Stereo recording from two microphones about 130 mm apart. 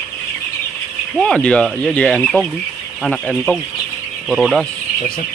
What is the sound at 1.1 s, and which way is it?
Speech, 5° left (ahead or behind).